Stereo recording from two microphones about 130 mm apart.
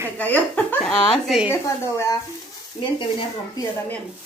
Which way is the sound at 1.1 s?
Centre (ahead or behind).